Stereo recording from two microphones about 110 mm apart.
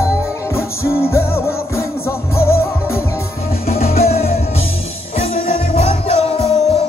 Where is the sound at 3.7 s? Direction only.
70° left (ahead or behind).